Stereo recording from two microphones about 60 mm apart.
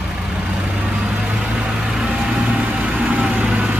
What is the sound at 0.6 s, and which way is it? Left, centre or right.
Vehicle, right.